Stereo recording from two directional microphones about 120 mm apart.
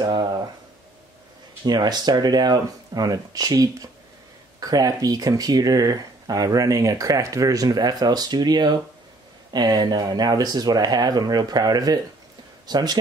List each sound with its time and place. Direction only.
0.0 s speech: 35° right (ahead or behind)
1.7 s speech: 35° right (ahead or behind)